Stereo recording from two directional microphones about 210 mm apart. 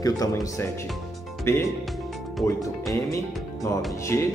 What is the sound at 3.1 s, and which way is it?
Music, 15° left (ahead or behind).